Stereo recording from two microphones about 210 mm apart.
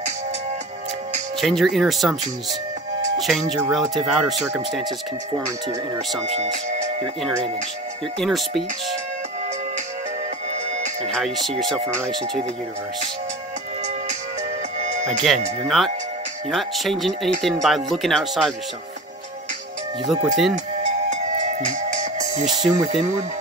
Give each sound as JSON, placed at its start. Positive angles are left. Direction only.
{"t": 1.4, "sound": "speech", "side_deg": 0}
{"t": 3.2, "sound": "speech", "side_deg": 0}
{"t": 8.2, "sound": "speech", "side_deg": 0}
{"t": 11.1, "sound": "speech", "side_deg": 0}
{"t": 14.8, "sound": "music", "side_deg": -30}
{"t": 15.0, "sound": "speech", "side_deg": 0}
{"t": 20.1, "sound": "speech", "side_deg": 0}
{"t": 20.5, "sound": "music", "side_deg": -35}